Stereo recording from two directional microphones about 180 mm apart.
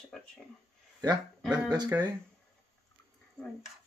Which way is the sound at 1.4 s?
5° right (ahead or behind).